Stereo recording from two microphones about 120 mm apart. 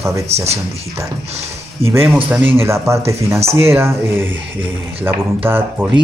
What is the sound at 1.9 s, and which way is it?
Speech, 20° right (ahead or behind).